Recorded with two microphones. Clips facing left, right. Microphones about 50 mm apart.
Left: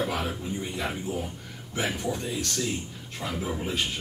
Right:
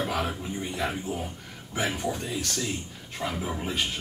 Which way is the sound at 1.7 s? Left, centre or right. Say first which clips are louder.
Even; right.